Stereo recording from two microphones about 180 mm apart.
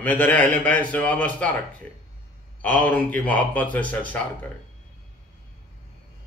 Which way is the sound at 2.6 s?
10° left (ahead or behind).